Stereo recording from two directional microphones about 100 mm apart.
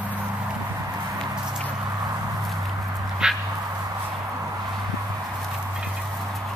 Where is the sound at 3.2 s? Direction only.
5° right (ahead or behind).